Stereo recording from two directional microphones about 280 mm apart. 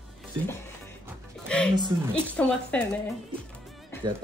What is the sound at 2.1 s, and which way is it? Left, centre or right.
Speech, centre.